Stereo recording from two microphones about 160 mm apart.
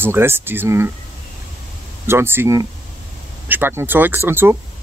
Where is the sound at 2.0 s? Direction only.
15° right (ahead or behind).